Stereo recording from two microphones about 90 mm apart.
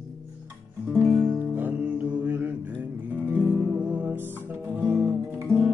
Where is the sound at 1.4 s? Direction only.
20° right (ahead or behind).